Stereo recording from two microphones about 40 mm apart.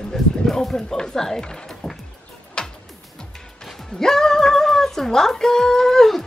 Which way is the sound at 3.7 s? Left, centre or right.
Centre.